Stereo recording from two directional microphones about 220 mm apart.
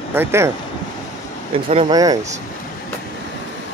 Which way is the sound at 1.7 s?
20° right (ahead or behind).